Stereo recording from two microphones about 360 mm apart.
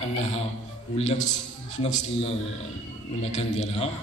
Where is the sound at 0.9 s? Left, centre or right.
Centre.